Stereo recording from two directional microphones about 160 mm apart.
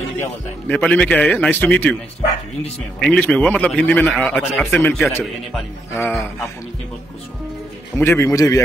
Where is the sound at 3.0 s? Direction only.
5° left (ahead or behind).